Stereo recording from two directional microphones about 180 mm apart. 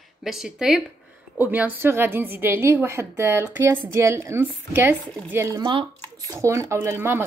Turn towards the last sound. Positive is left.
turn(degrees=-15)  # may be behind; listen again after turning